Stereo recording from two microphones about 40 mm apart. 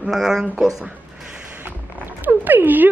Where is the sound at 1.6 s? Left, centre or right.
Right.